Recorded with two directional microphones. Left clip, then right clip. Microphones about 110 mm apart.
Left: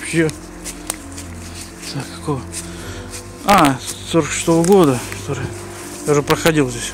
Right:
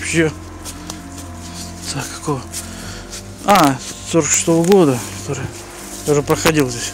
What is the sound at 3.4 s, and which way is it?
Speech, 10° right (ahead or behind).